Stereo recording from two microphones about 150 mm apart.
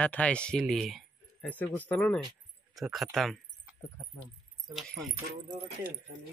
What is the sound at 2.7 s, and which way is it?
Speech, centre (ahead or behind).